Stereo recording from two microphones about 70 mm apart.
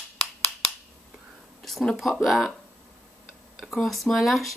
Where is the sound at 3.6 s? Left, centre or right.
Centre.